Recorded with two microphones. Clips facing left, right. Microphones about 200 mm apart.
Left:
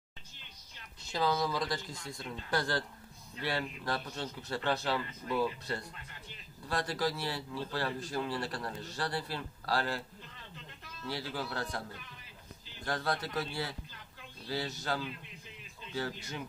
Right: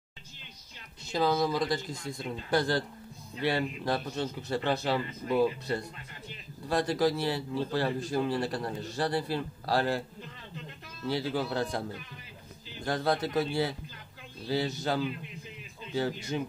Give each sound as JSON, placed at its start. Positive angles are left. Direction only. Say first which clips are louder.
{"t": 1.1, "sound": "a man's voice", "louder": "right 5 dB", "side_deg": -20}
{"t": 11.1, "sound": "a man's voice", "louder": "right 8 dB", "side_deg": -20}
{"t": 12.8, "sound": "a man's voice", "louder": "right 6 dB", "side_deg": -20}